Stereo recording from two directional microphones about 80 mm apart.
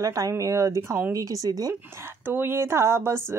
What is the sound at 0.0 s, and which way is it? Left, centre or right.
Speech, right.